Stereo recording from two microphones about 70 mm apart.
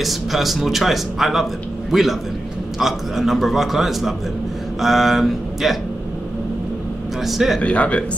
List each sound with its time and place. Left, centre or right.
0.0 s speech: centre
7.2 s speech: centre
7.6 s speech: centre